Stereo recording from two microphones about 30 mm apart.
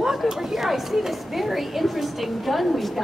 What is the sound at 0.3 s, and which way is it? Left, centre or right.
A woman's voice, centre.